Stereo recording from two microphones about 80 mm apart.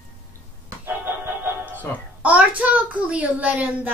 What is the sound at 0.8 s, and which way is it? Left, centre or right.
Music, right.